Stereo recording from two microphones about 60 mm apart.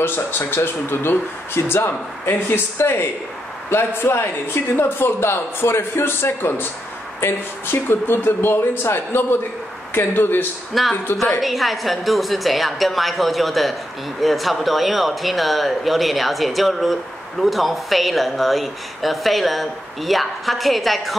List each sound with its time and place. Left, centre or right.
0.0 s speech: left
10.7 s speech: centre